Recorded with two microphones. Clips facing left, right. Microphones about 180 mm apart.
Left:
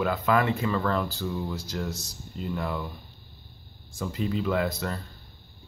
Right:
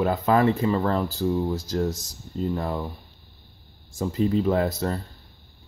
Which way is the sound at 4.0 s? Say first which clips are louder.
Right 6 dB; 35° right (ahead or behind).